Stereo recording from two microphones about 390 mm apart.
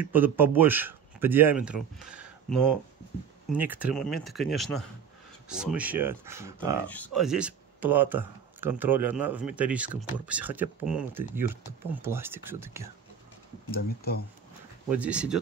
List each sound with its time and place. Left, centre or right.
0.0 s speech: centre
13.7 s speech: left
14.9 s speech: centre